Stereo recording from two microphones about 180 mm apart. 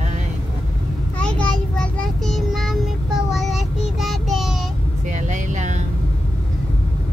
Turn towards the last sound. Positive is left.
turn(degrees=-40)  # may be behind; listen again after turning